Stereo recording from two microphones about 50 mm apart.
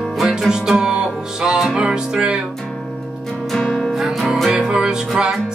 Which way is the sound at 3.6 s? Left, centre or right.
Centre.